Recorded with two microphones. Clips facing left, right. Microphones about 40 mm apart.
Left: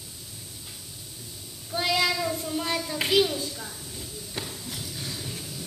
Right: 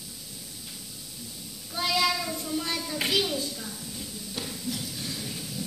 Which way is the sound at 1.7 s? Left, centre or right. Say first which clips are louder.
Left 1 dB; centre.